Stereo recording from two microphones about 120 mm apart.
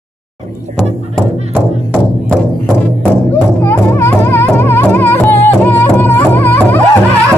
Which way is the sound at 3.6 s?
20° left (ahead or behind).